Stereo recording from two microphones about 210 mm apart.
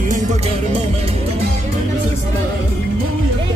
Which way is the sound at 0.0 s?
40° right (ahead or behind).